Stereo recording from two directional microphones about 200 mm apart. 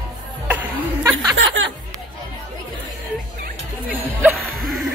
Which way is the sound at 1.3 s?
75° right (ahead or behind).